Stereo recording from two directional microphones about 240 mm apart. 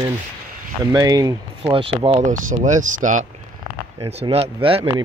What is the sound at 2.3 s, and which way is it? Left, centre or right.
Speech, right.